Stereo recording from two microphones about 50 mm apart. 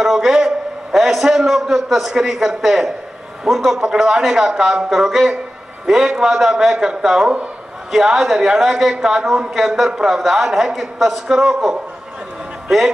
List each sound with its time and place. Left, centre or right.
0.0 s a man's voice: centre